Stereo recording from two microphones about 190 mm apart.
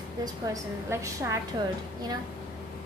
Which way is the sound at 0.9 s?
15° right (ahead or behind).